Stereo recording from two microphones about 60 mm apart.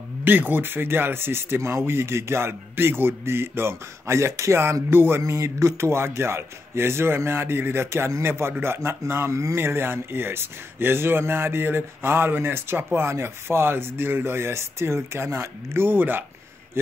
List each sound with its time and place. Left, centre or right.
0.2 s a man's voice: right
5.2 s a man's voice: right